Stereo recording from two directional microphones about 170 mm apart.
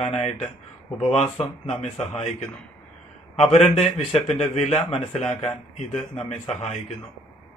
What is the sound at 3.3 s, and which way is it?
A man's voice, 35° left (ahead or behind).